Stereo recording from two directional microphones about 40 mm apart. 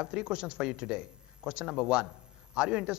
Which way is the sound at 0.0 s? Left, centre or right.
Right.